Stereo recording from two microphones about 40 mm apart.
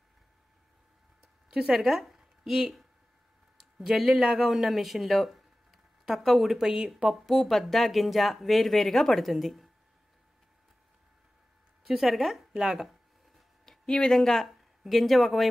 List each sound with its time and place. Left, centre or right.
1.5 s speech: centre
3.5 s speech: centre
7.2 s speech: centre
11.8 s speech: centre
13.7 s a sound: left
14.1 s speech: centre